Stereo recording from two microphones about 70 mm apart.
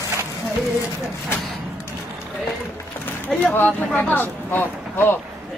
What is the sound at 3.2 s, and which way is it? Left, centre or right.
Speech, left.